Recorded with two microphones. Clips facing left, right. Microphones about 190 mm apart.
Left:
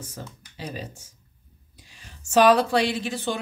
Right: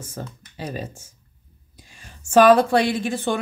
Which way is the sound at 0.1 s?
50° right (ahead or behind).